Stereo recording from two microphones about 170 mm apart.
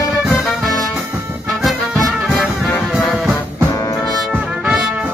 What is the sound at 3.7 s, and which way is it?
Music, 20° left (ahead or behind).